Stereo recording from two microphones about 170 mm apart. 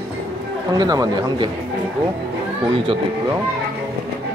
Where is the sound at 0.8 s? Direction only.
20° right (ahead or behind).